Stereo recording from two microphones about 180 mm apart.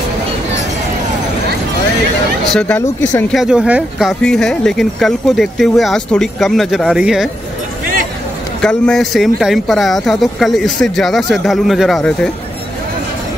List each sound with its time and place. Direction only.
3.3 s speech: 5° right (ahead or behind)
8.5 s speech: 5° left (ahead or behind)